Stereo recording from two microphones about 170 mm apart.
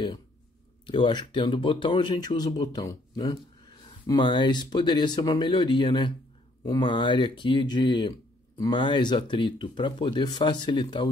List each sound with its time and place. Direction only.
0.8 s speech: 25° left (ahead or behind)